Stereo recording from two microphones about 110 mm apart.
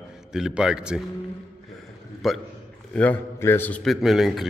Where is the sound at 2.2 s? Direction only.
Centre (ahead or behind).